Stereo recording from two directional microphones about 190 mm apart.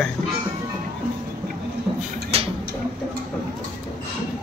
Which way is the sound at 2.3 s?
30° right (ahead or behind).